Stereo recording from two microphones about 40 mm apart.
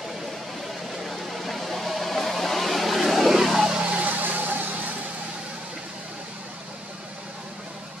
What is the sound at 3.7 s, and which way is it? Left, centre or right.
Vehicle, right.